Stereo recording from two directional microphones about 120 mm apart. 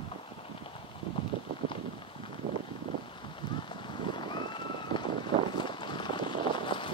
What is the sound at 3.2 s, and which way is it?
Boat, 40° left (ahead or behind).